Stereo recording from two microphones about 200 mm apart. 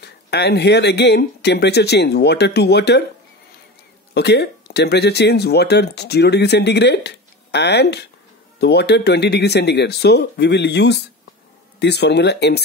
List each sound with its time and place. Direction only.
0.0 s speech: 55° left (ahead or behind)
4.1 s speech: 55° left (ahead or behind)